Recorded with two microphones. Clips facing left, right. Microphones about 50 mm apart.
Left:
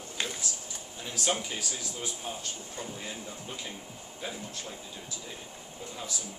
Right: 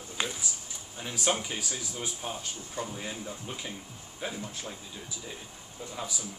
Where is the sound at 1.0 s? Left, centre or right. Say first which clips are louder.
Right 2 dB; centre.